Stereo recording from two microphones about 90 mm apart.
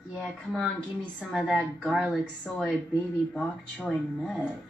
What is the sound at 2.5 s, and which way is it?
Speech, 10° left (ahead or behind).